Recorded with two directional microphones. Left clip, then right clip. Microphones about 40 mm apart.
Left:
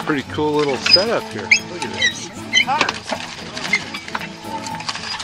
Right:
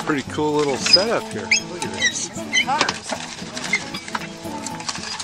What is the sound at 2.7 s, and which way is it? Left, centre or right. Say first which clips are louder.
Speech: left 2 dB; right.